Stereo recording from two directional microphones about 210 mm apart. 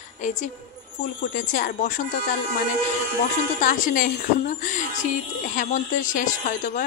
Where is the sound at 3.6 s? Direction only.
40° left (ahead or behind).